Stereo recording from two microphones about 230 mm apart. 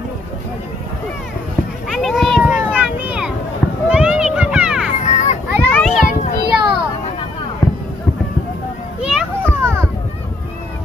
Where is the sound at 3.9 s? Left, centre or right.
Centre.